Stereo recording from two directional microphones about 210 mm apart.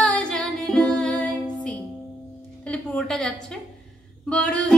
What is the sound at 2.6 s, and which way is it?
Speech, 5° left (ahead or behind).